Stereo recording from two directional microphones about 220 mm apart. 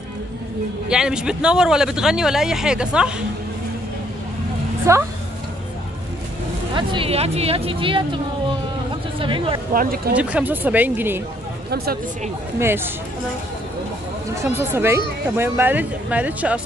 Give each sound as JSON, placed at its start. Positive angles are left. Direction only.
{"t": 0.8, "sound": "a man's voice", "side_deg": -5}
{"t": 4.9, "sound": "speech", "side_deg": -15}
{"t": 6.7, "sound": "speech", "side_deg": -20}
{"t": 9.8, "sound": "speech", "side_deg": -40}
{"t": 10.1, "sound": "speech", "side_deg": -5}
{"t": 11.7, "sound": "speech", "side_deg": -45}
{"t": 12.5, "sound": "speech", "side_deg": -10}
{"t": 14.3, "sound": "speech", "side_deg": -10}